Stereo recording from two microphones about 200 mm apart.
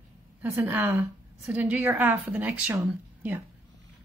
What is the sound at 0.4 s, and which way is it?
A woman's voice, 10° right (ahead or behind).